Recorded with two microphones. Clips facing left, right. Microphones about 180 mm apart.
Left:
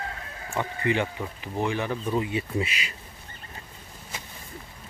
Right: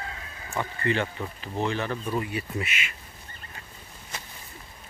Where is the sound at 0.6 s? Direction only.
15° left (ahead or behind); by 2.9 s 30° left (ahead or behind).